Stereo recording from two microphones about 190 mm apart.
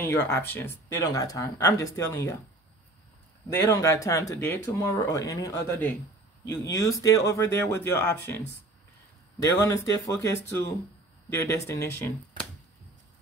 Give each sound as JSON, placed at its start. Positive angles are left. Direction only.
{"t": 0.0, "sound": "speech", "side_deg": 10}
{"t": 3.6, "sound": "speech", "side_deg": 15}
{"t": 9.4, "sound": "speech", "side_deg": 15}